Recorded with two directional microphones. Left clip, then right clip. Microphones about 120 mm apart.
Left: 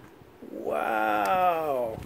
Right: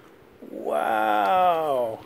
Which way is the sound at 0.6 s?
15° right (ahead or behind).